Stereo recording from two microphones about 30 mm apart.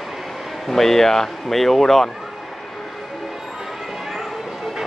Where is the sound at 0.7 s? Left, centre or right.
Centre.